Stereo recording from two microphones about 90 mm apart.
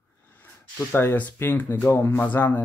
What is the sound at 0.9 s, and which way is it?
Speech, 25° left (ahead or behind).